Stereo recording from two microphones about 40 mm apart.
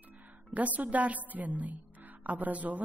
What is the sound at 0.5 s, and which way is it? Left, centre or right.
Speech, right.